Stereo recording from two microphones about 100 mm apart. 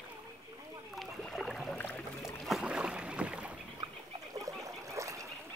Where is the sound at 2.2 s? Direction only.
Centre (ahead or behind).